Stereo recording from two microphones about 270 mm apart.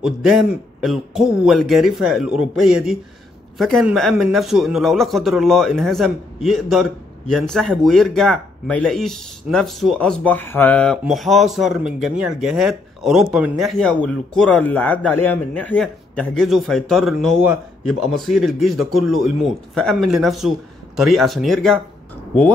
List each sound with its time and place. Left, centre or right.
0.0 s speech: centre